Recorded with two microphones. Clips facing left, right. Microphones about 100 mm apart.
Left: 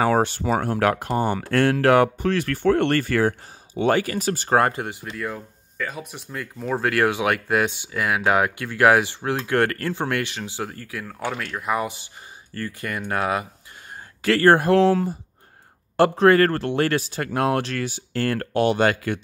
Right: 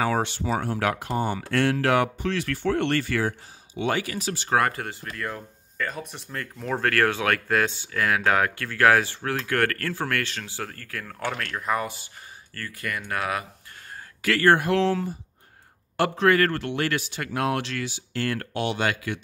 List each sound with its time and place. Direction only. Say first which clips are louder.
0.0 s speech: left 5 dB; 45° left (ahead or behind)
4.6 s speech: left 3 dB; 25° left (ahead or behind)
5.1 s a man's voice: left 3 dB; 5° left (ahead or behind); by 19.1 s 45° left (ahead or behind)